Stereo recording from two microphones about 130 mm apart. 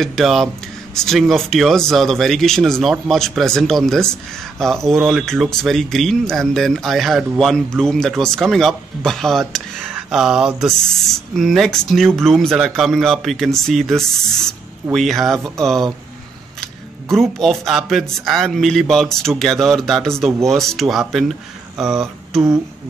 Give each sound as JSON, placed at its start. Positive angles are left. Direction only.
{"t": 0.0, "sound": "speech", "side_deg": 0}
{"t": 17.1, "sound": "speech", "side_deg": 0}